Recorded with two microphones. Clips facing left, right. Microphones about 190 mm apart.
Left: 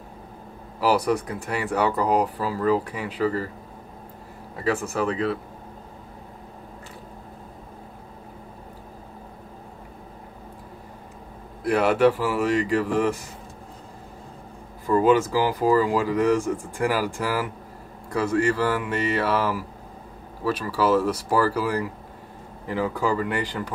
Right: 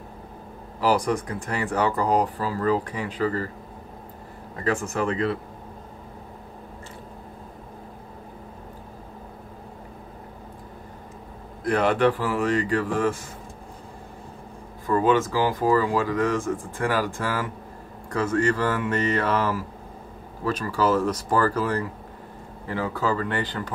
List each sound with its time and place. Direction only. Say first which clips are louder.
0.7 s speech: left 1 dB; 10° left (ahead or behind)
4.9 s speech: even; centre (ahead or behind)
11.6 s speech: left 2 dB; 5° left (ahead or behind)
14.9 s speech: left 2 dB; 15° left (ahead or behind)